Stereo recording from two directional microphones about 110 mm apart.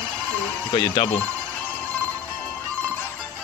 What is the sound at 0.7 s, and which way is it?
Speech, 50° left (ahead or behind).